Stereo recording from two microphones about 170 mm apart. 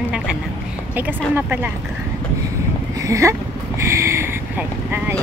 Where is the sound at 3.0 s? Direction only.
20° right (ahead or behind).